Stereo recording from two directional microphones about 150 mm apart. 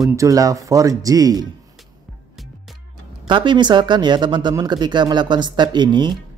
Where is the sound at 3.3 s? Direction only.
30° right (ahead or behind).